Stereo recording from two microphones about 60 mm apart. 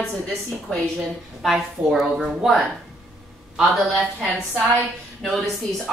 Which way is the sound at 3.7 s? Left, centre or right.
Centre.